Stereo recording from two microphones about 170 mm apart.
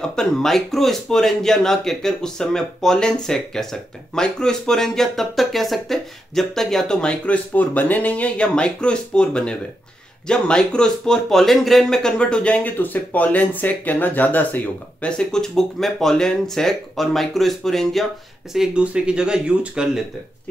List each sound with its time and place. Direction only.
0.0 s speech: 5° left (ahead or behind)